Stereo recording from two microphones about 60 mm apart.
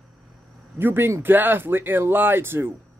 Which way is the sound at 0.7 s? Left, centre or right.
Right.